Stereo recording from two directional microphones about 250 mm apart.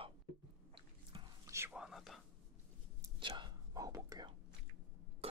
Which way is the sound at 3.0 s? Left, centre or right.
Centre.